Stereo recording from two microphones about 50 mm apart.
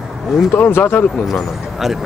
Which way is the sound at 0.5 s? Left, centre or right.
Left.